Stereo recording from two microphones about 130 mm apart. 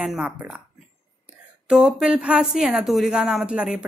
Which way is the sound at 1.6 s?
5° right (ahead or behind).